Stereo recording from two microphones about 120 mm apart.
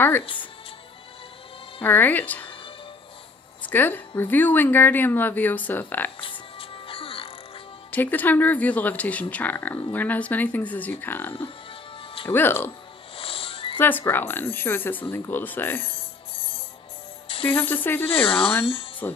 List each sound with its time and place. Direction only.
0.2 s speech: 45° left (ahead or behind)
1.8 s a woman's voice: 15° left (ahead or behind)
3.6 s a woman's voice: 15° left (ahead or behind)
6.2 s music: 50° left (ahead or behind)
7.9 s a woman's voice: 15° left (ahead or behind)
13.1 s music: 50° left (ahead or behind)
13.7 s a woman's voice: 15° left (ahead or behind)
17.5 s a woman's voice: 20° left (ahead or behind)
18.2 s speech: 50° left (ahead or behind)
19.0 s speech: 20° left (ahead or behind)